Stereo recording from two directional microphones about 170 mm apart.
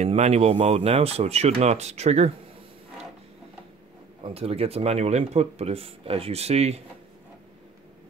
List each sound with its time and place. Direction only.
0.0 s speech: 40° right (ahead or behind)
4.2 s speech: 35° right (ahead or behind)